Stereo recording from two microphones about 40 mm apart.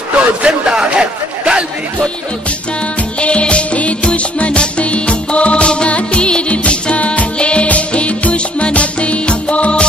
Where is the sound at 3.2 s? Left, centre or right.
Left.